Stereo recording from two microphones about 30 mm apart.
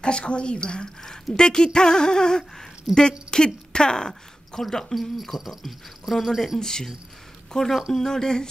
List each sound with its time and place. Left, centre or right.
0.0 s speech: left; by 4.9 s centre
5.4 s speech: centre
6.6 s speech: centre